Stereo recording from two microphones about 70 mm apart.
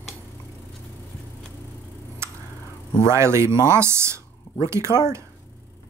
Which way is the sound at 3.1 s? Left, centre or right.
Right.